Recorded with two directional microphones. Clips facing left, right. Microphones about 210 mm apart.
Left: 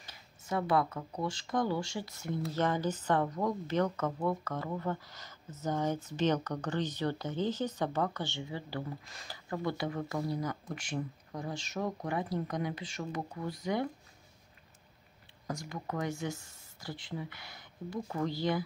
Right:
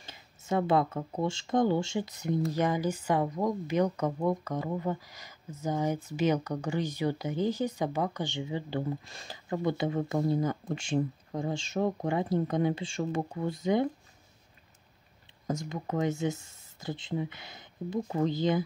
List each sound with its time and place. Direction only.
0.0 s speech: 25° right (ahead or behind)
15.4 s speech: 20° right (ahead or behind)